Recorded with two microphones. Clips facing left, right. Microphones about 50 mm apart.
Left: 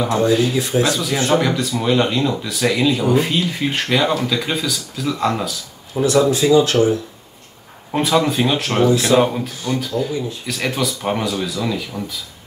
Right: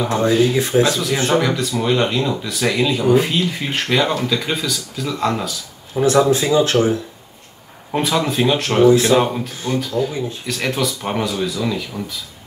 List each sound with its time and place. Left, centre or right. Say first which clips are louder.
0.3 s speech: right 1 dB; centre
0.6 s speech: right 2 dB; right
0.8 s speech: even; centre
6.3 s speech: left 1 dB; right
7.9 s speech: left 2 dB; centre